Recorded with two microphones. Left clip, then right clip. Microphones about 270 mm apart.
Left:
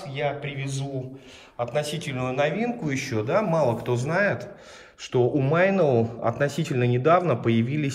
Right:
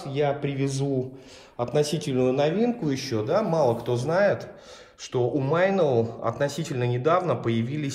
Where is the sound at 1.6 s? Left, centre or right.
Right; by 6.8 s centre.